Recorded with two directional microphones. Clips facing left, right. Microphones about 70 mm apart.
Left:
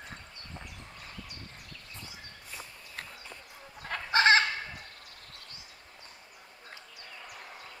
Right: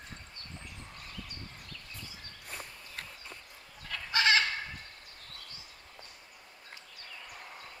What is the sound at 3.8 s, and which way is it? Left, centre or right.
Chicken, left.